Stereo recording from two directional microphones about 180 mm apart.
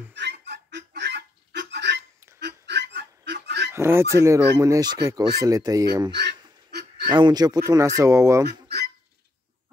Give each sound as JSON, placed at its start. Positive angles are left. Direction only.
{"t": 0.1, "sound": "goose", "side_deg": -70}
{"t": 3.7, "sound": "speech", "side_deg": -15}
{"t": 6.1, "sound": "goose", "side_deg": -70}
{"t": 7.1, "sound": "speech", "side_deg": -25}
{"t": 8.5, "sound": "fowl", "side_deg": -65}